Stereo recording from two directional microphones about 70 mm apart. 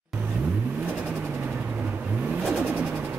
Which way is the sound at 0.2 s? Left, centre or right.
Right.